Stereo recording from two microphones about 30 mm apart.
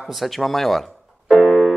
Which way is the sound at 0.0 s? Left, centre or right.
Centre.